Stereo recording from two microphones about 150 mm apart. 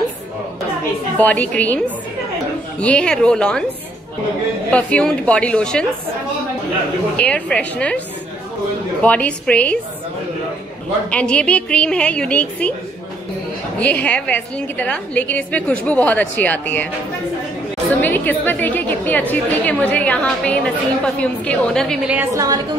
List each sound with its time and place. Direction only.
1.1 s a woman's voice: 10° left (ahead or behind)
2.8 s a woman's voice: 5° left (ahead or behind)
4.6 s a woman's voice: 10° left (ahead or behind)
7.2 s a woman's voice: 10° left (ahead or behind)
9.0 s a woman's voice: 10° left (ahead or behind)
11.1 s a woman's voice: 10° left (ahead or behind)
14.0 s a woman's voice: 10° left (ahead or behind)
18.0 s a woman's voice: 10° left (ahead or behind)
22.0 s a woman's voice: 10° right (ahead or behind)